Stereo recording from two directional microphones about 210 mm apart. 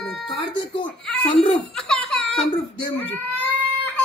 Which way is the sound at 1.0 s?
5° left (ahead or behind).